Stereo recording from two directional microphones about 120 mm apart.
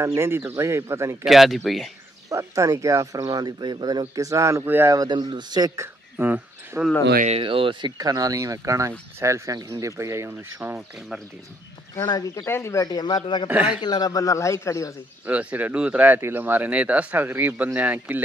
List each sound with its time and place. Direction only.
0.0 s speech: 20° right (ahead or behind)
1.2 s speech: centre (ahead or behind)
2.2 s speech: 25° right (ahead or behind)
4.9 s a man's voice: 35° right (ahead or behind)
5.8 s speech: 15° right (ahead or behind)
7.2 s speech: 50° right (ahead or behind)
8.0 s speech: 30° right (ahead or behind)
12.1 s speech: 35° left (ahead or behind)
12.4 s speech: 20° left (ahead or behind); by 13.5 s 40° left (ahead or behind)
13.5 s speech: 10° right (ahead or behind)
13.7 s speech: 35° left (ahead or behind)
15.2 s speech: 15° right (ahead or behind)